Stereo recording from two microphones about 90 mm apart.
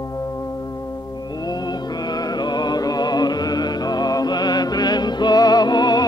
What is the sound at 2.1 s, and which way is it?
Music, 50° left (ahead or behind).